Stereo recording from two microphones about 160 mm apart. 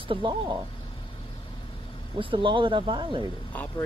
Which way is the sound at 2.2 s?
30° right (ahead or behind).